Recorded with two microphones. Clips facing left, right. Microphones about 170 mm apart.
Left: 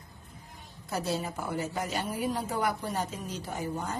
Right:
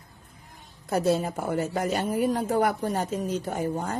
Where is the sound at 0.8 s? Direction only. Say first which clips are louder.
Right 8 dB; 55° right (ahead or behind).